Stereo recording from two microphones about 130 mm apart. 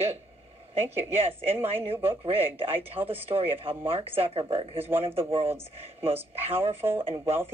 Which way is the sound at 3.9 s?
45° right (ahead or behind).